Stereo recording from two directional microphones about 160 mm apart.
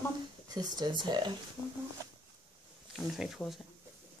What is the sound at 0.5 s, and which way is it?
Speech, 25° right (ahead or behind).